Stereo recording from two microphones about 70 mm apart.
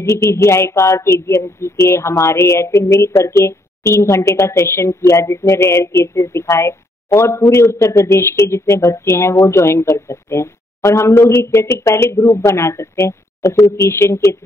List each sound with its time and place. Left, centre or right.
0.0 s speech: left